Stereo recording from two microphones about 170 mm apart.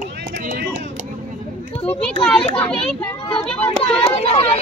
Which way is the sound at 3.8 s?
35° left (ahead or behind).